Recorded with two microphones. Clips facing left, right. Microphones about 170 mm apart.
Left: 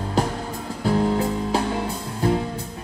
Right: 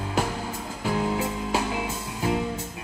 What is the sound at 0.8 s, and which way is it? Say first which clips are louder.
Music: left 5 dB; 35° left (ahead or behind).